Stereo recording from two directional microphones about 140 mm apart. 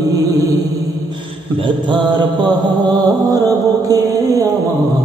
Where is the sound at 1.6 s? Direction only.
35° right (ahead or behind).